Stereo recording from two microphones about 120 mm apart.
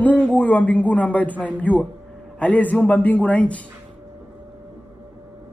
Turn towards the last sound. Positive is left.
turn(degrees=10)  # may be behind; listen again after turning